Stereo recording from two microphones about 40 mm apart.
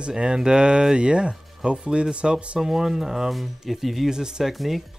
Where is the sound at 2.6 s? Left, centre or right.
Centre.